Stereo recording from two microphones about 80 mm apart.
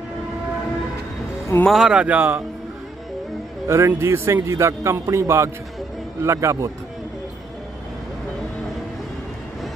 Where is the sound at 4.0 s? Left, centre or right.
Right.